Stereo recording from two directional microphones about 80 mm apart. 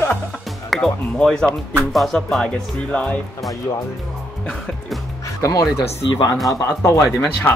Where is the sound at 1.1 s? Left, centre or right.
Centre.